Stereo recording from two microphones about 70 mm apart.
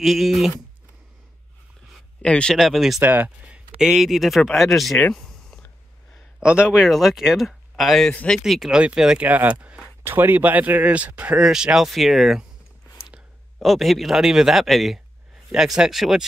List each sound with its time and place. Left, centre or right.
0.0 s speech: centre
2.2 s speech: centre
2.5 s speech: centre
3.0 s speech: right
3.4 s speech: centre
5.1 s a sound: centre
6.4 s speech: centre
8.1 s speech: centre
8.5 s speech: centre
9.3 s speech: right
11.4 s speech: centre
13.6 s speech: centre